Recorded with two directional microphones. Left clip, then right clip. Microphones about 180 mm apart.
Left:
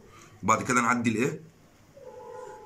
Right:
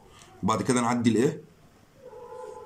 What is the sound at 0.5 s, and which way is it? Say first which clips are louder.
Speech: left 2 dB; 20° right (ahead or behind).